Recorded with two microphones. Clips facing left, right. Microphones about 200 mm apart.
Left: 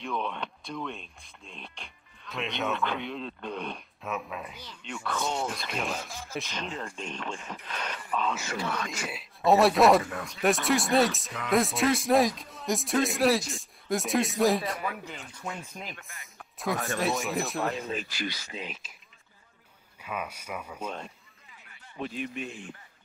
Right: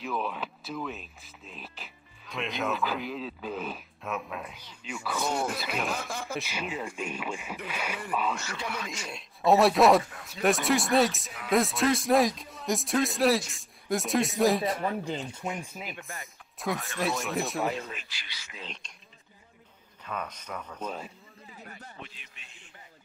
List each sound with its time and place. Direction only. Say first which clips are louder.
0.0 s speech: even; 5° right (ahead or behind)
5.9 s speech: right 4 dB; 60° right (ahead or behind)
6.3 s speech: left 1 dB; 10° right (ahead or behind)
8.7 s speech: left 3 dB; 55° left (ahead or behind)
9.1 s speech: even; centre (ahead or behind)
14.9 s speech: right 6 dB; 30° right (ahead or behind); by 17.8 s centre (ahead or behind)
17.9 s speech: left 13 dB; 45° left (ahead or behind)
18.6 s speech: left 4 dB; 5° left (ahead or behind)
20.0 s speech: left 1 dB; 10° left (ahead or behind)
21.5 s a sound: right 9 dB; 40° right (ahead or behind)
22.0 s speech: left 16 dB; 55° left (ahead or behind)